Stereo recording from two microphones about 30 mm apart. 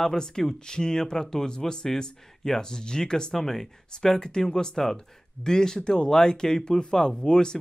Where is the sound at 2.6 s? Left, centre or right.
Left.